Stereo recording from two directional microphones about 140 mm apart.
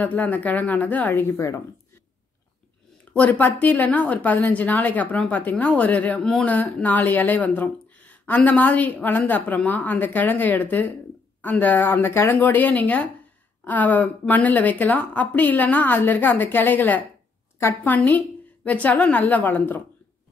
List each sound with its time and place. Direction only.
0.0 s a woman's voice: 10° left (ahead or behind)
1.0 s a woman's voice: 25° left (ahead or behind)
3.1 s a woman's voice: 10° left (ahead or behind)